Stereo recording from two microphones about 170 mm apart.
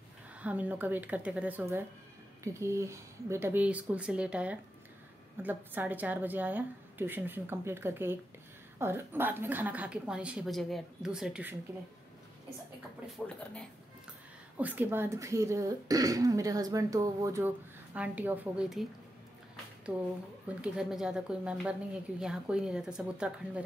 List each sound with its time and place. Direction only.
0.4 s speech: 10° right (ahead or behind)
13.1 s speech: centre (ahead or behind)
14.6 s speech: 10° right (ahead or behind)
19.9 s speech: 10° right (ahead or behind)